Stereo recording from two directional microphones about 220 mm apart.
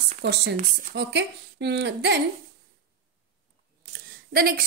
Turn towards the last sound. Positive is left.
turn(degrees=-45)  # may be behind; listen again after turning